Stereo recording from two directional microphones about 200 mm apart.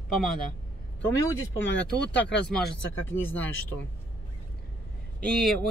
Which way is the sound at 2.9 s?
10° left (ahead or behind).